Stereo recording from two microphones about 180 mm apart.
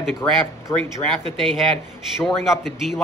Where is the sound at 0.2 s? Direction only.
15° left (ahead or behind).